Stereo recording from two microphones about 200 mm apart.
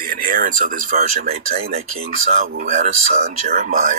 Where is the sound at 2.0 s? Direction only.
45° right (ahead or behind).